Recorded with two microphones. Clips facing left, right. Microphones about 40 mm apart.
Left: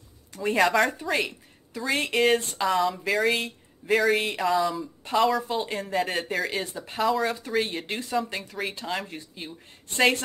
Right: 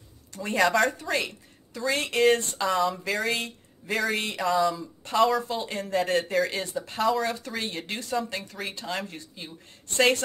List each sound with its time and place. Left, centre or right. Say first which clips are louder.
0.3 s speech: left 1 dB; centre
7.3 s speech: left 5 dB; centre